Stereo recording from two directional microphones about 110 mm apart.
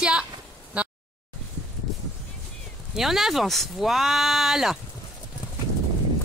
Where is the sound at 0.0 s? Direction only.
10° right (ahead or behind).